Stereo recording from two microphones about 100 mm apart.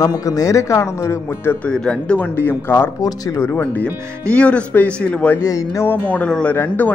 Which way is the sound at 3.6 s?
15° left (ahead or behind).